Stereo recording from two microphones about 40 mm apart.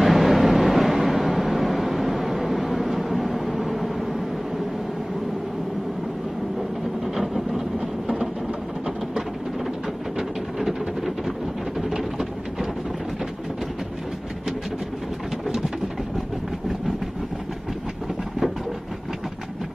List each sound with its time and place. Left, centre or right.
0.0 s vehicle: centre
7.2 s vehicle: centre
10.1 s a sound: centre